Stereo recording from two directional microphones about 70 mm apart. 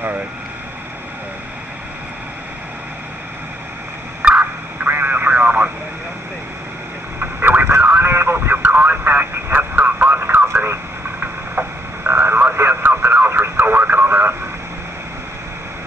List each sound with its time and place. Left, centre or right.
4.2 s a sound: centre
7.2 s radio: right
8.0 s vehicle: right
8.6 s vehicle: right